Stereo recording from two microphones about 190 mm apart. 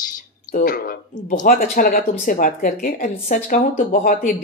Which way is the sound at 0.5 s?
50° left (ahead or behind).